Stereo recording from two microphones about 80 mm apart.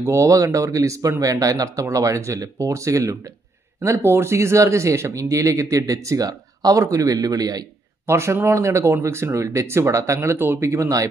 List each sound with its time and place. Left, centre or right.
0.0 s speech: right
8.1 s speech: right